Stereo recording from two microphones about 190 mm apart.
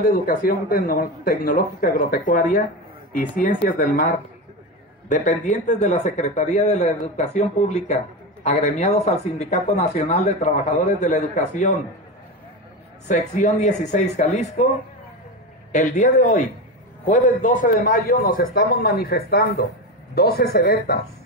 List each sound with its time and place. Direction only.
0.0 s a man's voice: 45° left (ahead or behind)
13.1 s speech: 40° left (ahead or behind)
15.7 s a man's voice: 40° left (ahead or behind)